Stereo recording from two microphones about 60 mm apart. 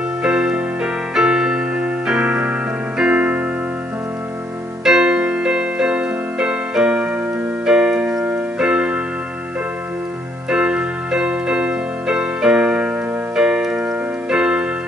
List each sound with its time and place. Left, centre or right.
0.2 s music: centre
1.1 s keyboard: centre
4.8 s music: centre
7.6 s keyboard: centre
10.5 s music: centre
13.4 s piano: centre